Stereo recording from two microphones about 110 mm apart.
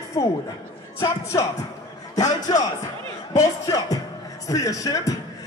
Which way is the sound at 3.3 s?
30° left (ahead or behind).